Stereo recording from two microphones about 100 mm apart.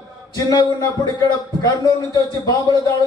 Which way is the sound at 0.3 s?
40° left (ahead or behind).